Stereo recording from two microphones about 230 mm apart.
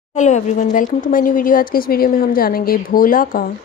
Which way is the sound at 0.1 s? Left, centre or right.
Left.